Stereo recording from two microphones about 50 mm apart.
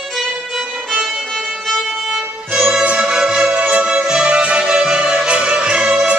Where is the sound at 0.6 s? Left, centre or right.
Centre.